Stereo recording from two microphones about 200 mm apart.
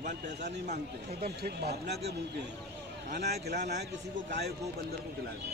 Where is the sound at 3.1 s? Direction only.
45° right (ahead or behind).